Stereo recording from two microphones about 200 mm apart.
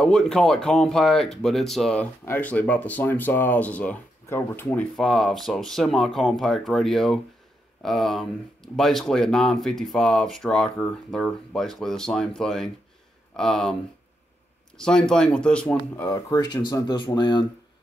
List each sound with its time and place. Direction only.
0.0 s speech: 5° left (ahead or behind)
14.8 s speech: 5° left (ahead or behind)
16.1 s speech: 20° left (ahead or behind)